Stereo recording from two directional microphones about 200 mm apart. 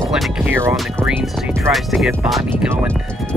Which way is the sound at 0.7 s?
Centre (ahead or behind).